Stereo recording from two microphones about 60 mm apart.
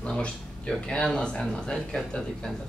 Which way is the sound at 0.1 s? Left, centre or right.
Centre.